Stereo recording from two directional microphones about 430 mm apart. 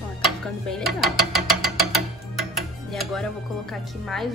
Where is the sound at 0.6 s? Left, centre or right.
Centre.